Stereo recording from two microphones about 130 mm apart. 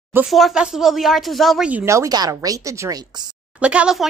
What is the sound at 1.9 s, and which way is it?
Speech, 25° right (ahead or behind).